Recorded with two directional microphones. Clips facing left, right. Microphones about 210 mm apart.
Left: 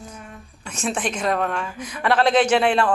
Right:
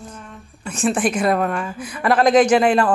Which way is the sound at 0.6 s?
5° right (ahead or behind).